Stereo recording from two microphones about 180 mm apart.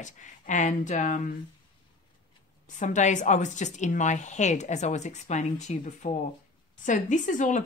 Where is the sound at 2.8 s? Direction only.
45° left (ahead or behind).